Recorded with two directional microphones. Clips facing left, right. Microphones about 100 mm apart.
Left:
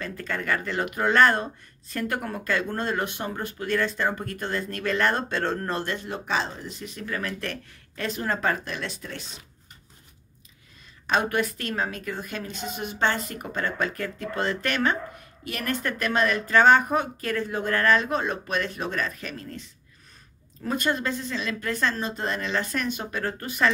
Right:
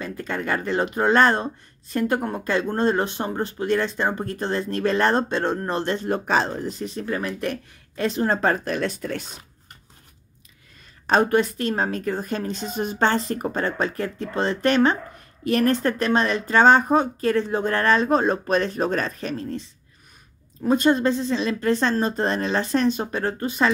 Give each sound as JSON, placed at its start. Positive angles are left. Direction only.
{"t": 0.0, "sound": "speech", "side_deg": -20}
{"t": 6.0, "sound": "a woman's voice", "side_deg": -45}
{"t": 8.0, "sound": "speech", "side_deg": -25}
{"t": 11.1, "sound": "a woman's voice", "side_deg": -40}
{"t": 11.3, "sound": "a woman's voice", "side_deg": -25}
{"t": 20.6, "sound": "speech", "side_deg": -25}
{"t": 22.0, "sound": "a woman's voice", "side_deg": -40}
{"t": 22.4, "sound": "speech", "side_deg": -25}